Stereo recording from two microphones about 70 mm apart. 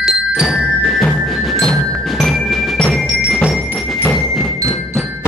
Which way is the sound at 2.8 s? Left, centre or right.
Centre.